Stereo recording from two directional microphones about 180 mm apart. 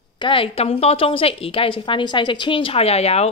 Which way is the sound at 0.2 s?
30° left (ahead or behind).